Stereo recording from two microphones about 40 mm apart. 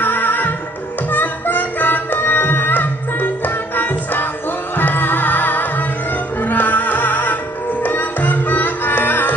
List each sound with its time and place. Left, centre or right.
0.0 s music: left